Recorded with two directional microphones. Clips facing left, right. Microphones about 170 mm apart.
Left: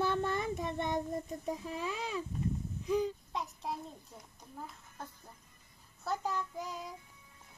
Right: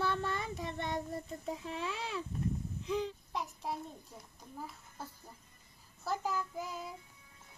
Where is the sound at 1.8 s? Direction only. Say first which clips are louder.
Left 2 dB; 10° left (ahead or behind).